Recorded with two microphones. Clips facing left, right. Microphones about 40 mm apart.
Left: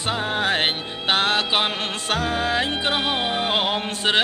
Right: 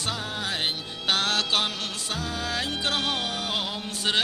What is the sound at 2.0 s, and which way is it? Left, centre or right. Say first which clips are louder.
Music: left 10 dB; left.